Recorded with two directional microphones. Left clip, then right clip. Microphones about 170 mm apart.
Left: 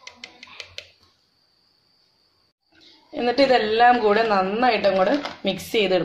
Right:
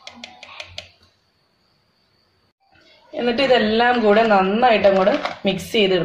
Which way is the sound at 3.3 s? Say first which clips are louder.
Right 1 dB; 45° left (ahead or behind).